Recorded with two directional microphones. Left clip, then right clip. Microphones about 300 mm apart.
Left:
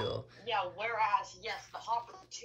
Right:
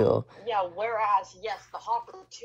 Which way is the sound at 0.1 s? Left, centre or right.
Centre.